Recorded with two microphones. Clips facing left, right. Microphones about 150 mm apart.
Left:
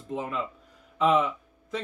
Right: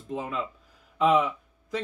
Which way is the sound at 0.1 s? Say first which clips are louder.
Even; centre (ahead or behind).